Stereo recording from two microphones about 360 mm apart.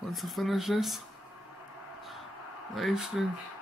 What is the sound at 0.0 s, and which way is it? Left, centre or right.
Speech, centre.